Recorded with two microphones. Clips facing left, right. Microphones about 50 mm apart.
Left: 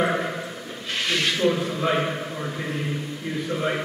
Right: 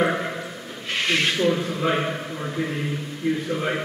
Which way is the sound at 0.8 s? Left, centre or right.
Right.